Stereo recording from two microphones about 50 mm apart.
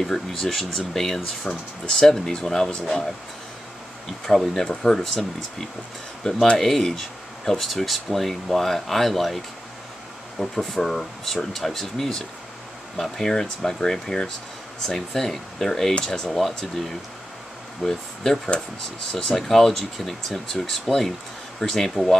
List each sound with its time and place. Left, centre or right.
0.0 s speech: centre
4.6 s speech: centre
6.6 s speech: centre
10.4 s speech: centre